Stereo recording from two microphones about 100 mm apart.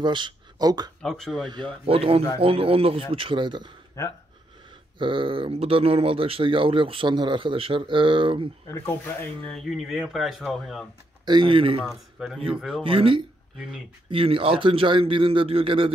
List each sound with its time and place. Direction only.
0.0 s speech: 50° right (ahead or behind)
1.0 s speech: 5° left (ahead or behind)
1.9 s speech: 70° right (ahead or behind)
3.1 s speech: 60° right (ahead or behind)
4.9 s speech: 55° right (ahead or behind)
8.6 s speech: 25° left (ahead or behind)
9.5 s speech: 5° left (ahead or behind)
11.2 s speech: 55° right (ahead or behind)
11.8 s speech: centre (ahead or behind)
12.8 s speech: 60° right (ahead or behind)